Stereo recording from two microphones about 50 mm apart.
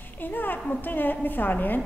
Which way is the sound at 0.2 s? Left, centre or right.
Left.